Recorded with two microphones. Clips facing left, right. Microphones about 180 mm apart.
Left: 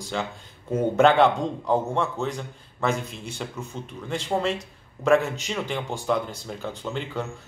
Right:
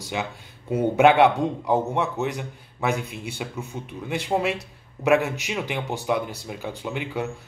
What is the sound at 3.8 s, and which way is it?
Speech, 15° right (ahead or behind).